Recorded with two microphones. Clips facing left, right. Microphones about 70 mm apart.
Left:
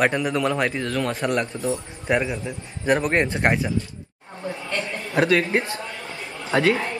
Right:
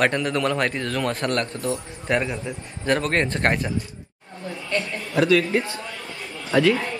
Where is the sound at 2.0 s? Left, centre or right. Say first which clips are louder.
Left 1 dB; centre.